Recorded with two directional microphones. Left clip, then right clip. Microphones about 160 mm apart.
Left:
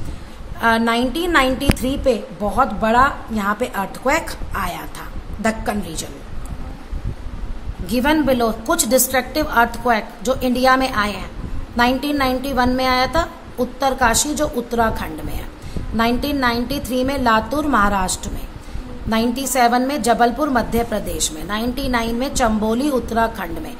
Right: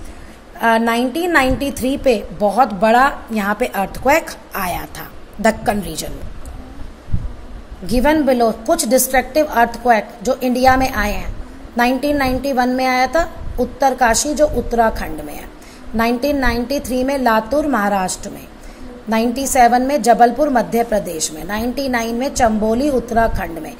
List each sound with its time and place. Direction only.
0.6 s a woman's voice: 10° right (ahead or behind)
7.8 s a woman's voice: 10° right (ahead or behind)